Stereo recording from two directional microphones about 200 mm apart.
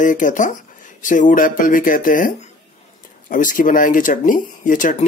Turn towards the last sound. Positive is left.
turn(degrees=40)  # may be behind; listen again after turning